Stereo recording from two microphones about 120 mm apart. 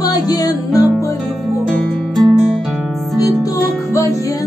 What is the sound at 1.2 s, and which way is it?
Music, centre (ahead or behind).